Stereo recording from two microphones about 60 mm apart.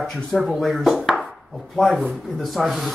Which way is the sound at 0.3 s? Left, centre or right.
Centre.